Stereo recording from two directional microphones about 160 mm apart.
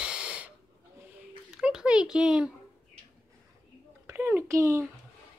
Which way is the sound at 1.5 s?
5° right (ahead or behind).